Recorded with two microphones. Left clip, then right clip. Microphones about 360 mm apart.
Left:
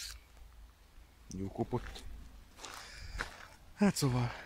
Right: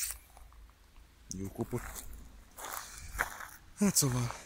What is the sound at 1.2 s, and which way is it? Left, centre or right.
Speech, centre.